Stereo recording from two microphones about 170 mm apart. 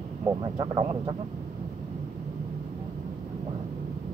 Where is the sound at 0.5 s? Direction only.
25° right (ahead or behind).